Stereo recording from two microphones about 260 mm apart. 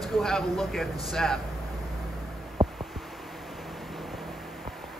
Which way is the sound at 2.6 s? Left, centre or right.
Centre.